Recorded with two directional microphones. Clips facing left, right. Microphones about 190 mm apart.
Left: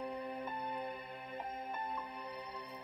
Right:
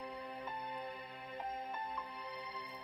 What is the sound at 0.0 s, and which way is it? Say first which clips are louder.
Music: left 5 dB; 50° left (ahead or behind).